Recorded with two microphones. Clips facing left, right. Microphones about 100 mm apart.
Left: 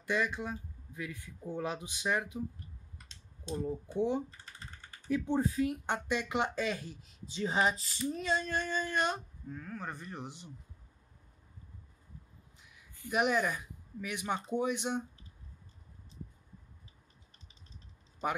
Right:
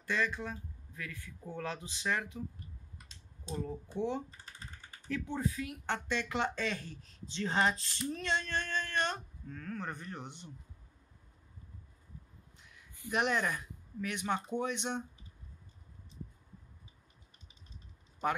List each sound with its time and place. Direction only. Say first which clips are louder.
0.0 s speech: left 2 dB; 15° left (ahead or behind)
3.6 s speech: left 4 dB; 15° left (ahead or behind)
5.2 s speech: left 7 dB; 30° left (ahead or behind)
5.9 s speech: left 2 dB; 15° left (ahead or behind)
13.1 s speech: left 2 dB; 5° left (ahead or behind)